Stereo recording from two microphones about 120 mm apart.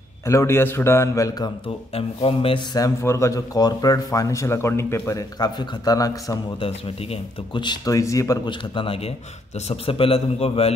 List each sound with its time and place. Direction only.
0.3 s speech: 25° left (ahead or behind)
2.0 s a man's voice: 50° left (ahead or behind)
2.7 s speech: 25° left (ahead or behind)
6.6 s speech: 45° left (ahead or behind); by 8.4 s 25° left (ahead or behind)
8.5 s a man's voice: 45° left (ahead or behind)